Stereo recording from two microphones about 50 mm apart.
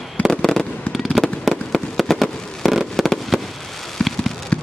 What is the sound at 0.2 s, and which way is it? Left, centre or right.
Fireworks, centre.